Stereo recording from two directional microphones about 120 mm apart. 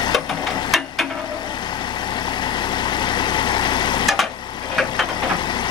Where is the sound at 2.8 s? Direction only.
40° left (ahead or behind).